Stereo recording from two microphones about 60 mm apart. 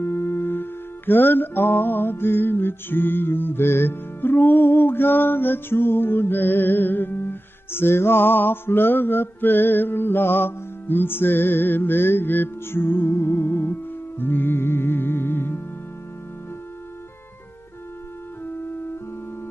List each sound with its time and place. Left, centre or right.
0.0 s music: left
18.4 s organ: left